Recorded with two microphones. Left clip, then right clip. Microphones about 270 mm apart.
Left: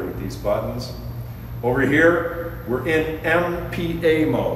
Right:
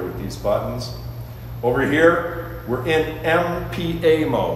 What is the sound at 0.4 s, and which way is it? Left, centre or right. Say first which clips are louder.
A man's voice: right 1 dB; centre.